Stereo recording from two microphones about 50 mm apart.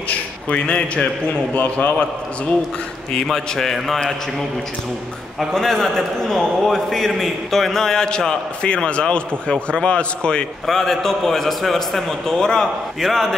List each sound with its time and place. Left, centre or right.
0.1 s a sound: left
1.5 s a man's voice: left
3.1 s a man's voice: centre
5.5 s a man's voice: centre
10.7 s a man's voice: centre
12.4 s a man's voice: centre